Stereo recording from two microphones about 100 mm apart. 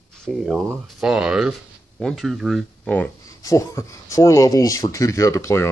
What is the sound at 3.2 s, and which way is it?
Speech, 35° left (ahead or behind).